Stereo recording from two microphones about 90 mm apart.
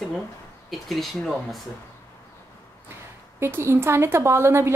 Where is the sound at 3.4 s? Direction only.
25° right (ahead or behind).